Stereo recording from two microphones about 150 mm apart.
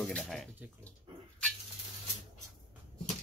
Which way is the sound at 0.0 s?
5° left (ahead or behind).